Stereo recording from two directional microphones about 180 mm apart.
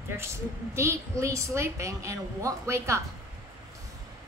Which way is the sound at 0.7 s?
15° right (ahead or behind).